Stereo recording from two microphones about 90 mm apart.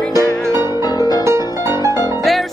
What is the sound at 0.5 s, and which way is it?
Music, 45° left (ahead or behind).